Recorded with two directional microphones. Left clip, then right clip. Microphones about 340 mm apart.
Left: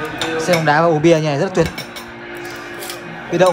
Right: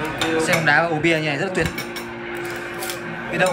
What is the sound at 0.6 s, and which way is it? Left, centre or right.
Speech, centre.